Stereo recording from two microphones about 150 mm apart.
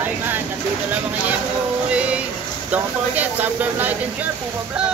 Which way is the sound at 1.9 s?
10° right (ahead or behind).